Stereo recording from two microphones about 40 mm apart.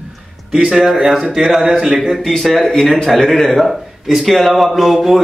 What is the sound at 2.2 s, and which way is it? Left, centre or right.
A man's voice, centre.